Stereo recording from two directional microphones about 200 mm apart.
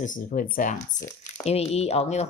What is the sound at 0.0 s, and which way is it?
Speech, 40° left (ahead or behind).